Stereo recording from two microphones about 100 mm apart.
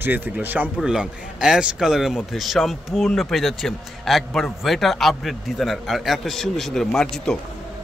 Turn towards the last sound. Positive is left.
turn(degrees=5)  # may be behind; listen again after turning